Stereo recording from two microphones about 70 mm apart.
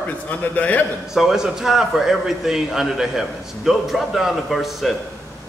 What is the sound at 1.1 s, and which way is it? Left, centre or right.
A man's voice, centre.